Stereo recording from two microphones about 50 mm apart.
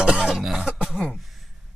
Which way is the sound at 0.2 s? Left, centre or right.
Centre.